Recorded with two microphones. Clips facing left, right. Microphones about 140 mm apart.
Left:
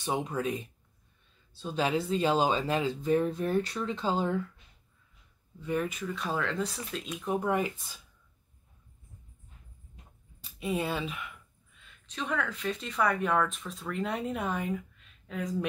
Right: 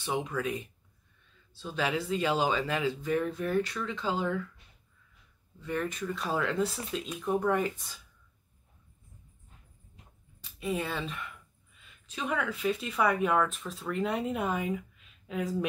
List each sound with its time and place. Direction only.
0.3 s speech: 20° left (ahead or behind)
1.6 s speech: 25° left (ahead or behind)
3.8 s speech: 35° left (ahead or behind)
5.6 s speech: 10° left (ahead or behind)
7.2 s speech: 10° left (ahead or behind)
10.6 s speech: 15° left (ahead or behind)
11.0 s a sound: 5° left (ahead or behind)
11.8 s speech: 10° right (ahead or behind)